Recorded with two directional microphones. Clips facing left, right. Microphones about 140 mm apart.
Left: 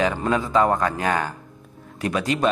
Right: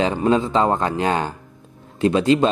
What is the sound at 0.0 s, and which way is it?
A man's voice, 25° right (ahead or behind).